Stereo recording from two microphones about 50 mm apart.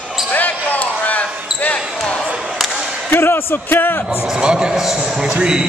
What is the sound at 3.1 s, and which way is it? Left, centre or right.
Speech, left.